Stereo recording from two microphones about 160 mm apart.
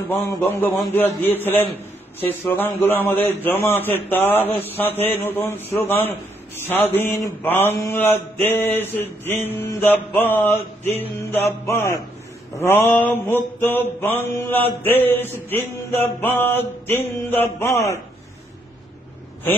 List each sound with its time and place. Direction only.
0.3 s mantra: 15° left (ahead or behind)